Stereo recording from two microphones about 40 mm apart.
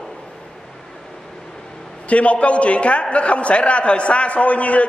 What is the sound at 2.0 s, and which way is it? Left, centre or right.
A man's voice, left.